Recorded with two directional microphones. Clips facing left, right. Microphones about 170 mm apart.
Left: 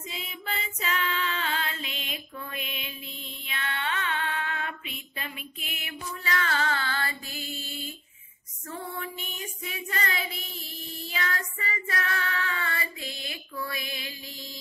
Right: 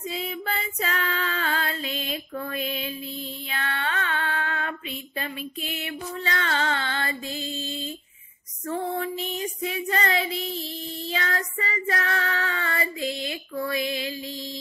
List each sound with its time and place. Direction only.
0.1 s female singing: 40° right (ahead or behind)
3.4 s music: 40° right (ahead or behind)
8.9 s child singing: 30° right (ahead or behind)
13.7 s female singing: 30° right (ahead or behind)